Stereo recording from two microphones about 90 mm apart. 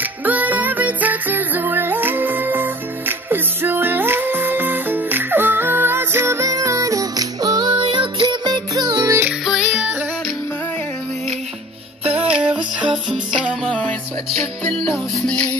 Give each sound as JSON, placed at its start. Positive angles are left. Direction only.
{"t": 0.2, "sound": "music", "side_deg": -20}
{"t": 7.7, "sound": "music", "side_deg": -70}
{"t": 9.5, "sound": "music", "side_deg": -5}
{"t": 12.2, "sound": "music", "side_deg": -10}
{"t": 13.7, "sound": "music", "side_deg": 10}